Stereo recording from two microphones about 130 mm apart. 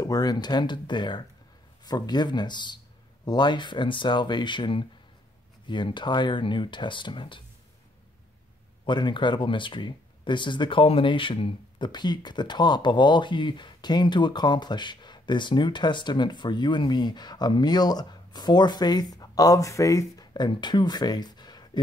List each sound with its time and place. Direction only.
0.0 s speech: 30° left (ahead or behind)
8.8 s speech: 35° left (ahead or behind)